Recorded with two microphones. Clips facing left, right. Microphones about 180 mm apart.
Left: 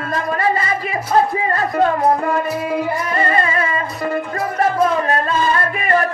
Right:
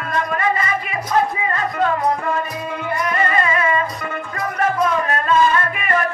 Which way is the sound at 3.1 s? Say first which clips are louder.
Left 2 dB; 35° left (ahead or behind).